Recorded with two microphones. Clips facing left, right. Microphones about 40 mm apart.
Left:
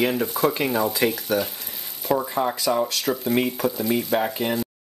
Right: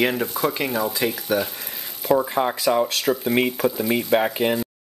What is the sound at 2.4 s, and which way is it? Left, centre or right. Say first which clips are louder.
Speech: right 2 dB; right.